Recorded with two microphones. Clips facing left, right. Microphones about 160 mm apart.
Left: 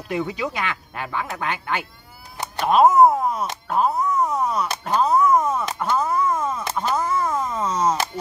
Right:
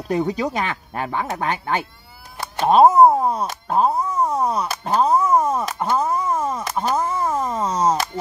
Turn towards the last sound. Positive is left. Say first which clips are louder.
# right 2 dB
turn(degrees=-30)  # may be behind; listen again after turning